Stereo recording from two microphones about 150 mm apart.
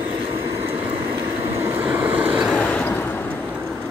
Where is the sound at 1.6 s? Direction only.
15° right (ahead or behind).